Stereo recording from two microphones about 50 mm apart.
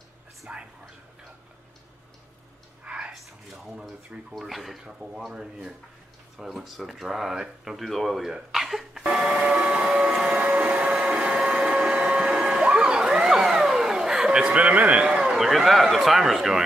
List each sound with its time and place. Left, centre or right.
0.5 s whispering: right
2.8 s whispering: right
3.1 s a sound: centre
4.4 s speech: centre
4.8 s speech: centre
6.3 s speech: centre
7.8 s speech: centre
9.0 s a sound: centre
14.6 s a man's voice: right
15.0 s speech: centre